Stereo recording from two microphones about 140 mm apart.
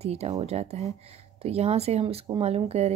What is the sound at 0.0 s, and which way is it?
A woman's voice, 50° right (ahead or behind).